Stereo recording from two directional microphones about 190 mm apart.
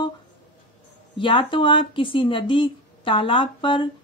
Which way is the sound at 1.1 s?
25° left (ahead or behind).